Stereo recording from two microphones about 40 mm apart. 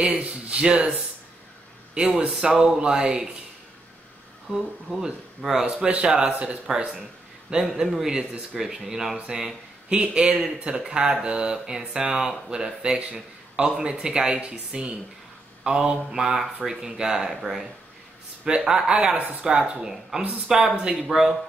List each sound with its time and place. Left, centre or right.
0.1 s speech: right
4.5 s speech: centre; by 6.6 s right
6.9 s a sound: right
7.8 s speech: centre
18.7 s speech: right